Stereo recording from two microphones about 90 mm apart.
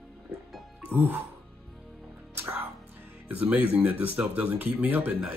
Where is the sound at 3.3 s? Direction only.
20° right (ahead or behind).